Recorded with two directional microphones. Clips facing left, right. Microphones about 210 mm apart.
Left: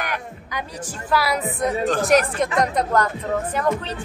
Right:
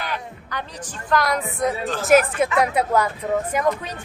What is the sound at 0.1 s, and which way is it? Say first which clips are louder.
A woman's voice: even; 10° left (ahead or behind).